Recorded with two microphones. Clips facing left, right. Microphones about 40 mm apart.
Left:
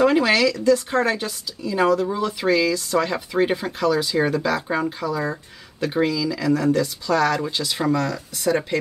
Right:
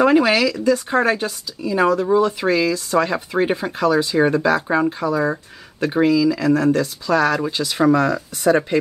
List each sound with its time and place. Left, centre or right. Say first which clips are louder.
0.0 s a woman's voice: right 2 dB; centre